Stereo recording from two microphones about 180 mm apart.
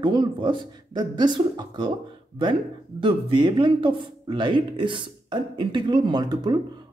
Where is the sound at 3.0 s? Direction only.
25° right (ahead or behind).